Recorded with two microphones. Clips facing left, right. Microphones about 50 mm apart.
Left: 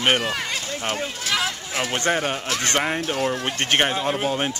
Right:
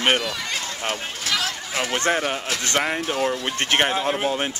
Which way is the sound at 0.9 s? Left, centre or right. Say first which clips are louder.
Left 3 dB; centre.